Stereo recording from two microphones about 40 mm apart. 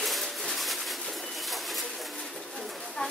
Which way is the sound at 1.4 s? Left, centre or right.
Centre.